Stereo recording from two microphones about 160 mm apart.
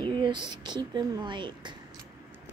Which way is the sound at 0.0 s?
30° right (ahead or behind).